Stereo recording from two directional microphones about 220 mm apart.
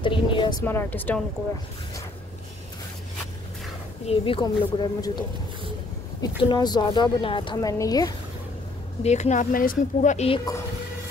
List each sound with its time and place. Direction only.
0.0 s a sound: 20° left (ahead or behind)
4.0 s a woman's voice: 25° left (ahead or behind)
6.2 s a woman's voice: 20° left (ahead or behind)
9.0 s speech: 30° left (ahead or behind)